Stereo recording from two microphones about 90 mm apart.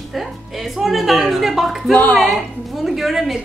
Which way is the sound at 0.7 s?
Centre (ahead or behind).